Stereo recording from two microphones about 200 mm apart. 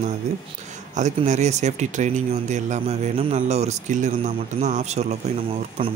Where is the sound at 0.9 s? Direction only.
35° right (ahead or behind).